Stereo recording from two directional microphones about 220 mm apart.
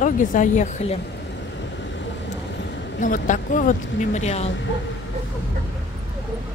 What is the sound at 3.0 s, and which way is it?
A woman's voice, 35° left (ahead or behind).